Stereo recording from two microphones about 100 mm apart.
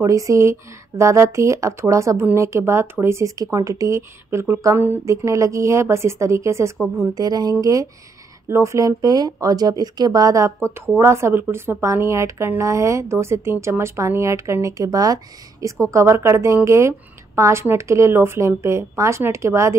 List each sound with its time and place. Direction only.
0.0 s speech: 35° right (ahead or behind)
7.0 s speech: 40° right (ahead or behind)